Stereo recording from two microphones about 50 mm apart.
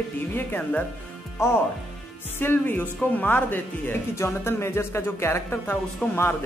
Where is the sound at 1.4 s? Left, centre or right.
Left.